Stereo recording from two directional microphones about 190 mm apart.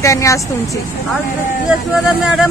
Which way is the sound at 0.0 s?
15° left (ahead or behind).